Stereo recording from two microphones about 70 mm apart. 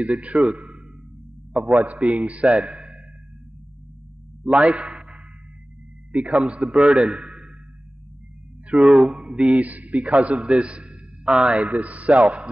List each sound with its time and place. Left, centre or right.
0.0 s a man's voice: centre
4.5 s a man's voice: centre
6.3 s a man's voice: centre
9.0 s a man's voice: centre